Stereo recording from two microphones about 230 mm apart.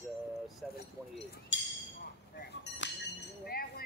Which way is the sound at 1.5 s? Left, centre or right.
Left.